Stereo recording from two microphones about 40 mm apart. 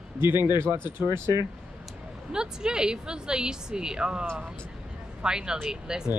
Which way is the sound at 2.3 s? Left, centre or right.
Centre.